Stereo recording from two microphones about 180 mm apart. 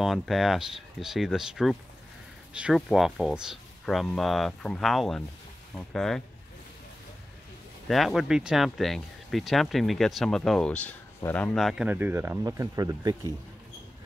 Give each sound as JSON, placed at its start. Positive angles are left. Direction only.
{"t": 0.0, "sound": "speech", "side_deg": 0}
{"t": 7.9, "sound": "speech", "side_deg": 0}